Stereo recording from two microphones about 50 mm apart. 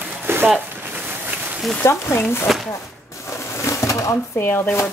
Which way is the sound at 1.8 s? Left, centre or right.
Left.